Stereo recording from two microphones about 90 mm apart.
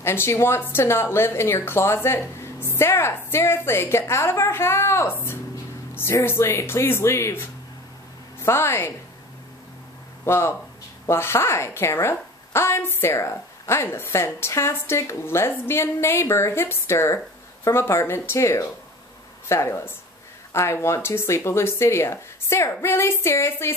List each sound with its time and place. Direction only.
0.0 s a woman's voice: 30° left (ahead or behind)
10.2 s a woman's voice: 30° left (ahead or behind)